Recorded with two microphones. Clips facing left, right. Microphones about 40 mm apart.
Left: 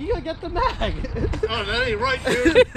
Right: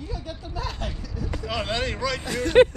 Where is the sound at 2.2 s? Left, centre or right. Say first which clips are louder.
Left 9 dB; left.